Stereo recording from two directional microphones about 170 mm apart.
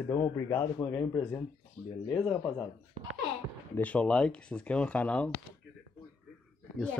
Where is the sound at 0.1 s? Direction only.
20° left (ahead or behind).